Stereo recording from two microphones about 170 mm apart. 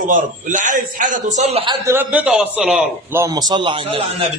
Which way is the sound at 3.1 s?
20° right (ahead or behind).